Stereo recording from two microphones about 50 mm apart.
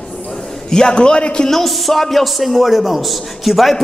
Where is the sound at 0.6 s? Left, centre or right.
Centre.